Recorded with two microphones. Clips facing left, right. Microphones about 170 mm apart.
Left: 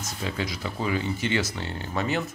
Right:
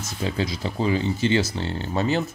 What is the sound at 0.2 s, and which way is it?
Speech, 30° right (ahead or behind).